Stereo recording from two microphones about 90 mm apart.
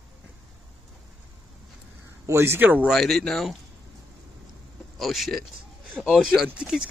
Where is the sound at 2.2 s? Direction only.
30° right (ahead or behind).